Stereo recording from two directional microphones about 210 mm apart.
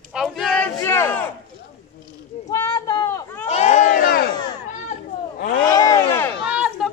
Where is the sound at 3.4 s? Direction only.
30° left (ahead or behind).